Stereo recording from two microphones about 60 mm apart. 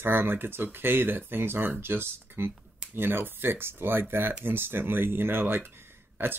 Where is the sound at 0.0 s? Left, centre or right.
Right.